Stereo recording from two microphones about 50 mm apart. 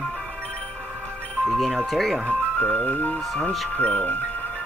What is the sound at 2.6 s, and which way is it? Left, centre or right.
Speech, left.